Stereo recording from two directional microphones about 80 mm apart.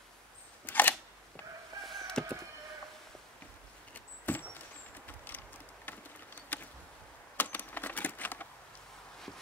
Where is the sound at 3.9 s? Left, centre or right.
Left.